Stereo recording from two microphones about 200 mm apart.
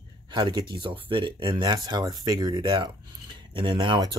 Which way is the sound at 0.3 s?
20° right (ahead or behind).